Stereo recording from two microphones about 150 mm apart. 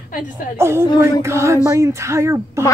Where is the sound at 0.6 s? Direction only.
15° right (ahead or behind).